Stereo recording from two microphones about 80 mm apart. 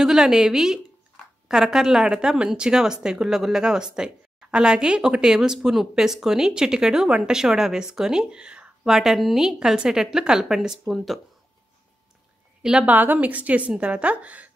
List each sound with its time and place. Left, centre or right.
0.0 s speech: centre
12.6 s speech: centre